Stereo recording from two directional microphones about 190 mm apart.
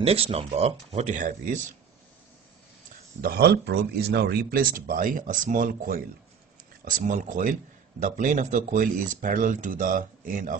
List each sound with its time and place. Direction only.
0.0 s speech: 30° right (ahead or behind)
3.2 s speech: 55° right (ahead or behind)